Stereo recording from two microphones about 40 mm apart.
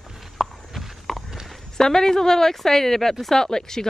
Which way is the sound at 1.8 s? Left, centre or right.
Centre.